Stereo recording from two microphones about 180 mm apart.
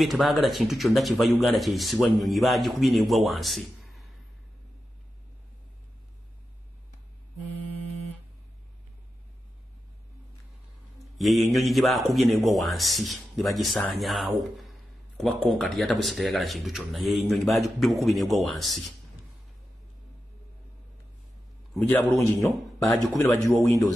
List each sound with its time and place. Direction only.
0.0 s speech: centre (ahead or behind)
11.1 s speech: centre (ahead or behind)
21.8 s a man's voice: 15° left (ahead or behind)